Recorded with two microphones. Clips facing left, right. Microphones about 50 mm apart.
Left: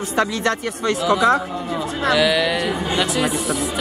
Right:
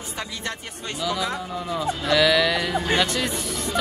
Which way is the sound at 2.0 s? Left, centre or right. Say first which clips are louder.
Left 2 dB; centre.